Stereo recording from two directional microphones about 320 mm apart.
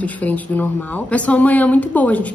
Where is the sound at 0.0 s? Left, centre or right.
Centre.